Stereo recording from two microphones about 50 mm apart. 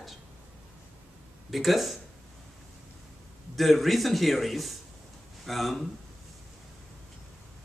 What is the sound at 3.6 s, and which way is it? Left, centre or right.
Speech, centre.